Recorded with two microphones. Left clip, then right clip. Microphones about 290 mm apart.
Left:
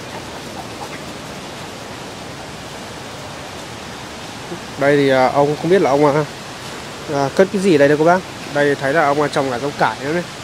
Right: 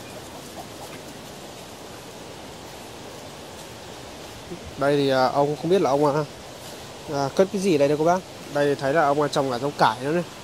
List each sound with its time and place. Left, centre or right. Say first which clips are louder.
4.8 s speech: left 7 dB; centre; by 10.2 s right